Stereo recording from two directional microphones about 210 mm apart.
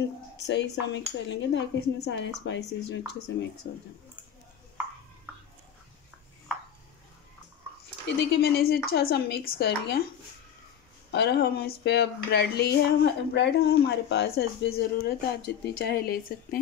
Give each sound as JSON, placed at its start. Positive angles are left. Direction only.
{"t": 0.5, "sound": "dishes", "side_deg": 55}
{"t": 8.2, "sound": "speech", "side_deg": 50}
{"t": 11.1, "sound": "speech", "side_deg": 50}